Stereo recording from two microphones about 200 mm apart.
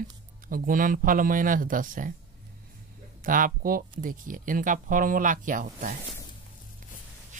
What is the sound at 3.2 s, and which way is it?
Speech, 45° right (ahead or behind).